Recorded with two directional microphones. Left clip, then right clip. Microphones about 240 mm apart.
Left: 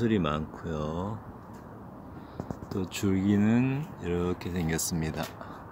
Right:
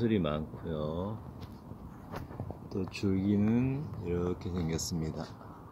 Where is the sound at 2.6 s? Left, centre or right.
Centre.